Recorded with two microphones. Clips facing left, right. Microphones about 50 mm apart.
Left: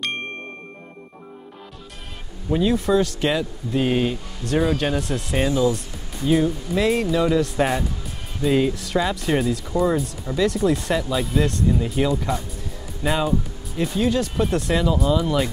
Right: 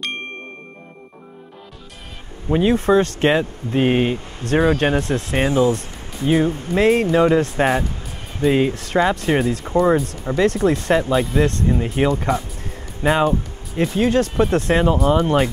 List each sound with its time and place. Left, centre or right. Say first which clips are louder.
2.5 s speech: right 4 dB; right
8.7 s speech: right 5 dB; right
13.2 s speech: right 4 dB; right